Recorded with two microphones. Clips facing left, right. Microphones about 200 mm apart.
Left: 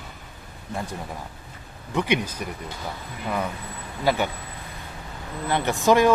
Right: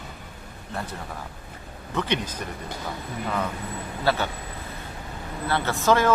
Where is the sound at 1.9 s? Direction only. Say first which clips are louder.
Left 3 dB; 10° left (ahead or behind).